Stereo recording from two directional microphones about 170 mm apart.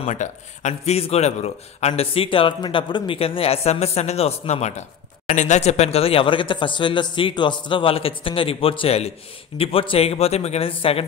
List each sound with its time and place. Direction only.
0.0 s a man's voice: 45° left (ahead or behind)